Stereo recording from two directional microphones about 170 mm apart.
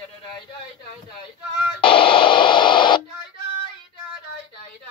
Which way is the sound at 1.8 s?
30° left (ahead or behind).